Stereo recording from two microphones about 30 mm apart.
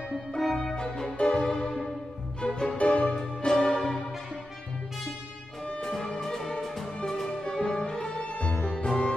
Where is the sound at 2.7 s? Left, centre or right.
Left.